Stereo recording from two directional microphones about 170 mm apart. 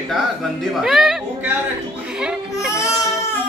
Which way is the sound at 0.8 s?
Centre (ahead or behind).